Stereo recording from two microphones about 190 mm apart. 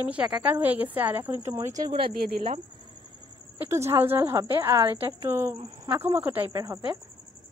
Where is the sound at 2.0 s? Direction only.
50° right (ahead or behind).